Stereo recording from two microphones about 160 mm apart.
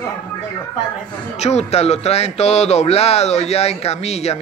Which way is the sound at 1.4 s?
45° left (ahead or behind).